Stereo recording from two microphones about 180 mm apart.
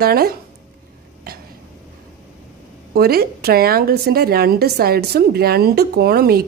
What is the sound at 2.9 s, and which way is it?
A woman's voice, 60° right (ahead or behind).